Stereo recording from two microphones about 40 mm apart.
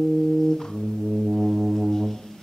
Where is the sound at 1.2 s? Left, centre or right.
Centre.